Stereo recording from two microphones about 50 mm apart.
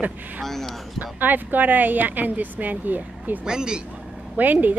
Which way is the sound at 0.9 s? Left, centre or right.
Right.